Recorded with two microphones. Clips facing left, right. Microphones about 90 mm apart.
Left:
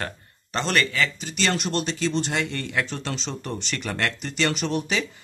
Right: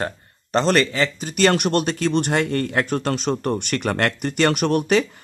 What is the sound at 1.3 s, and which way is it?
Speech, 55° right (ahead or behind).